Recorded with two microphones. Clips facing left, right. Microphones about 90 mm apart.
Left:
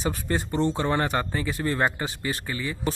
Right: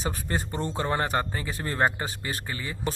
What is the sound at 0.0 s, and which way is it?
A man's voice, 35° right (ahead or behind).